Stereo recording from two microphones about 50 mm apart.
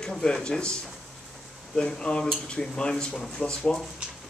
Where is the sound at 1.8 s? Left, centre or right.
Centre.